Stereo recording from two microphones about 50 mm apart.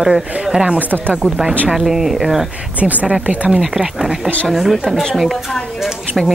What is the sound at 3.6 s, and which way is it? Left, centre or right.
Speech, centre.